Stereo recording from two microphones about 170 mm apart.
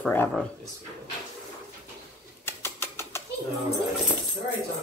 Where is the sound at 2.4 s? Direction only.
15° left (ahead or behind).